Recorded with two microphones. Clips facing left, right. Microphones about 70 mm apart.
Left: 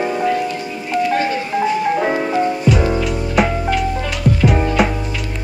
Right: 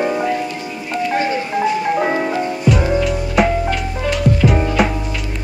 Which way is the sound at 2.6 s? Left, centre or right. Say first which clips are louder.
Even; centre.